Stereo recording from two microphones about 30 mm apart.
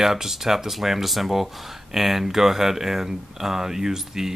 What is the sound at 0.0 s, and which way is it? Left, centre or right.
Speech, centre.